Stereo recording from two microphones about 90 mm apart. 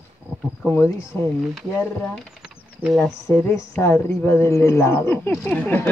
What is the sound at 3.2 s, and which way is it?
Speech, 30° left (ahead or behind).